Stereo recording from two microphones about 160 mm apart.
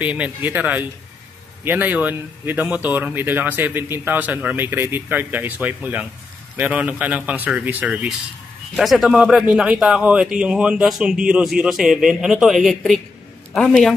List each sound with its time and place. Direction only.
0.0 s a man's voice: 10° right (ahead or behind)